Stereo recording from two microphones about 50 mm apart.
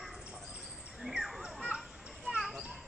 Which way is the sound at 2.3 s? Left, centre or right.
Centre.